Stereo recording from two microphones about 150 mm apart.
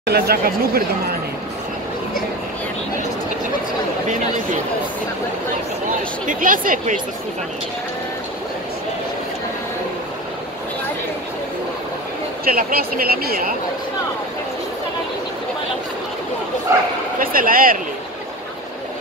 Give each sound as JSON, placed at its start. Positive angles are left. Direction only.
{"t": 0.1, "sound": "speech", "side_deg": -90}
{"t": 6.2, "sound": "speech", "side_deg": -65}
{"t": 12.4, "sound": "speech", "side_deg": -80}
{"t": 16.7, "sound": "speech", "side_deg": -20}
{"t": 17.2, "sound": "speech", "side_deg": -70}